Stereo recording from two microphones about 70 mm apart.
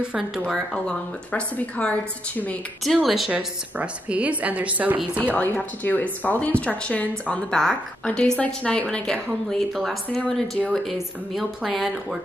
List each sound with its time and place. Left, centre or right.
0.8 s a woman's voice: centre
2.8 s speech: centre
3.3 s a woman's voice: centre
5.3 s a woman's voice: left; by 12.2 s centre